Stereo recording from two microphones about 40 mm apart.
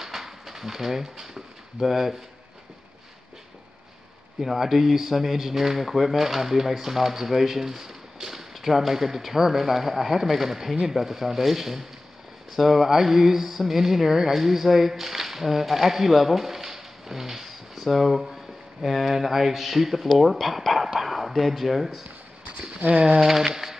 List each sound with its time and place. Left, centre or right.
0.0 s a sound: centre
4.4 s speech: centre
22.8 s speech: right
23.2 s speech: centre